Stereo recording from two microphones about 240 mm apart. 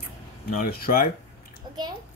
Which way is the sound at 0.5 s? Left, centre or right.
Left.